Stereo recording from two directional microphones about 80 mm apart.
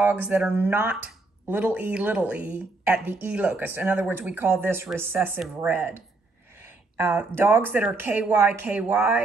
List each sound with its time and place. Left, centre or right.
0.5 s speech: right